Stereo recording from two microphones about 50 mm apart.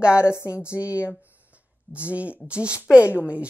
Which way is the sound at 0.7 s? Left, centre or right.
Left.